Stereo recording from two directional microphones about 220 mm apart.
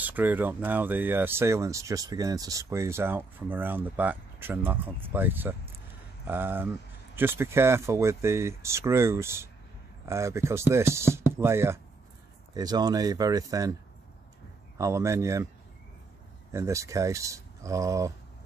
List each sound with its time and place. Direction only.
0.0 s speech: 10° right (ahead or behind)
14.8 s speech: 15° right (ahead or behind)
16.5 s speech: 15° right (ahead or behind)